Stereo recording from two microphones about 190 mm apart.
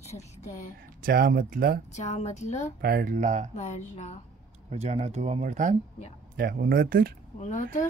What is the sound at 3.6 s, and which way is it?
Speech, 35° left (ahead or behind).